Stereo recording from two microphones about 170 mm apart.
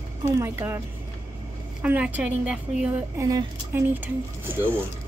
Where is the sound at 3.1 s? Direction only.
20° right (ahead or behind).